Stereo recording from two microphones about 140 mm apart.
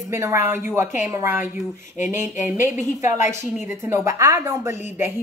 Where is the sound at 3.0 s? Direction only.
20° right (ahead or behind).